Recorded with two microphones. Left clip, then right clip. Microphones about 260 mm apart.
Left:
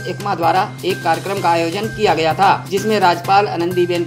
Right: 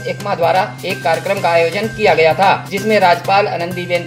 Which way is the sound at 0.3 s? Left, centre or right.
Left.